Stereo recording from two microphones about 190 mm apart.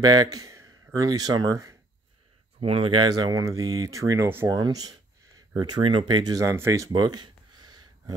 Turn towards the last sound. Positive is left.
turn(degrees=-20)  # may be behind; listen again after turning